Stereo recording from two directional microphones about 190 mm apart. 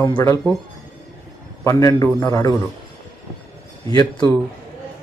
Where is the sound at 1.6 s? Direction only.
15° left (ahead or behind).